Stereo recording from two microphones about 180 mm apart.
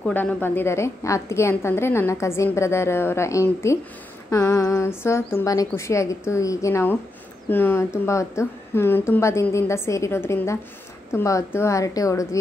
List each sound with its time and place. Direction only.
0.0 s a woman's voice: 10° left (ahead or behind)